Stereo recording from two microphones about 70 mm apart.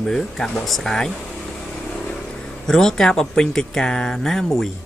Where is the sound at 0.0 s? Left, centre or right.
Centre.